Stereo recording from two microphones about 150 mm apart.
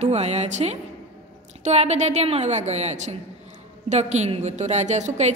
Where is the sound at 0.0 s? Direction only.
45° right (ahead or behind).